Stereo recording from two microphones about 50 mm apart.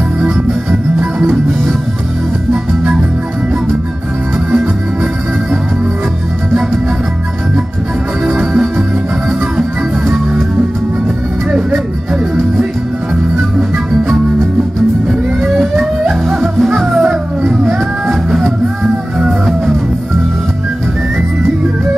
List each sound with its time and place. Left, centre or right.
8.3 s music: right
15.5 s music: centre